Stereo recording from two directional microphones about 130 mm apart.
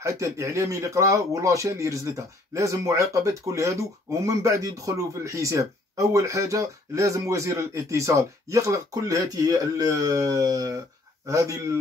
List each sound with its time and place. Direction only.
0.0 s speech: 25° right (ahead or behind)